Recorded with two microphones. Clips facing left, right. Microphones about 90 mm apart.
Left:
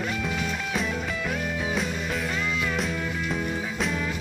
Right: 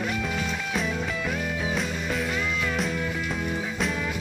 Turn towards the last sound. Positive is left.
turn(degrees=0)  # may be behind; listen again after turning